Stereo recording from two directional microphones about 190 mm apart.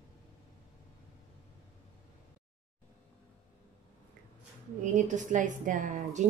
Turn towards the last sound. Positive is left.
turn(degrees=-40)  # may be behind; listen again after turning